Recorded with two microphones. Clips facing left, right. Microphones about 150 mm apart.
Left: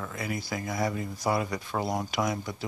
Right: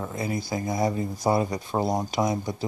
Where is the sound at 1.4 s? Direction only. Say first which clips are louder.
Right 5 dB; 30° right (ahead or behind).